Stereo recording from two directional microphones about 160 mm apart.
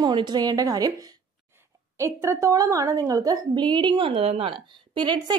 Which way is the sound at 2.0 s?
15° right (ahead or behind).